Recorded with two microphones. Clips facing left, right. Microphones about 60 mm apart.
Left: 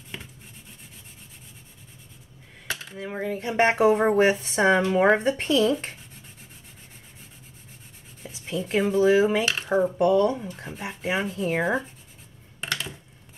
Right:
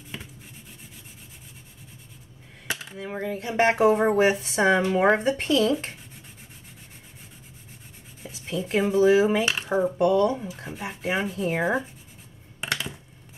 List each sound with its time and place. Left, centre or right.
2.7 s a sound: centre
3.0 s speech: centre
8.2 s speech: centre
12.5 s computer keyboard: centre